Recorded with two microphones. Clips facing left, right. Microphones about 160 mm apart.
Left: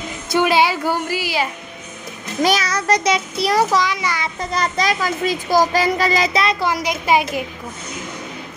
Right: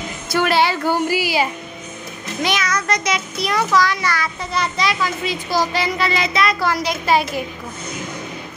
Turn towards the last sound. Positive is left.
turn(degrees=15)  # may be behind; listen again after turning